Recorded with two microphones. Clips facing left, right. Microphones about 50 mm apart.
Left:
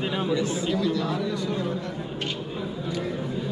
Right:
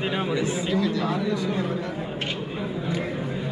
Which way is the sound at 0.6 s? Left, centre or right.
Centre.